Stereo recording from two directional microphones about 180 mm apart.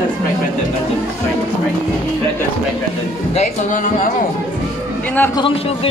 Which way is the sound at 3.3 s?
45° left (ahead or behind).